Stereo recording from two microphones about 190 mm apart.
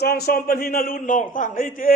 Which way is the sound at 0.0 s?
55° left (ahead or behind).